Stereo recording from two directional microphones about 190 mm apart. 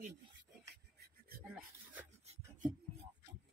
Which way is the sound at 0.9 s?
50° right (ahead or behind).